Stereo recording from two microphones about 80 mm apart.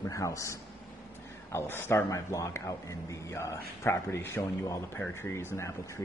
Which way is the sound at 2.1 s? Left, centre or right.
Left.